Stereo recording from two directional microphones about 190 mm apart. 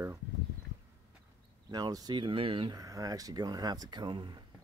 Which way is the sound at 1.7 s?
20° right (ahead or behind).